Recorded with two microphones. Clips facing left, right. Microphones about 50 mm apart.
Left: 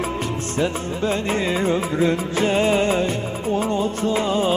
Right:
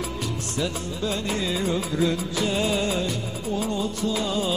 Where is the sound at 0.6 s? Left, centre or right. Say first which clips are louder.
Left 6 dB; left.